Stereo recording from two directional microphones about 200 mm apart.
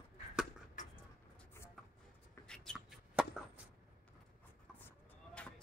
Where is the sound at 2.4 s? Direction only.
5° left (ahead or behind).